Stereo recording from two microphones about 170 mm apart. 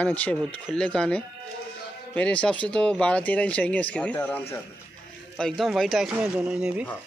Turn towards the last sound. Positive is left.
turn(degrees=-5)  # may be behind; listen again after turning